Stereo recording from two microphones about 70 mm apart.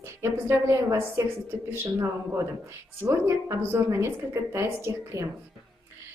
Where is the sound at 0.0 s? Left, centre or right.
Right.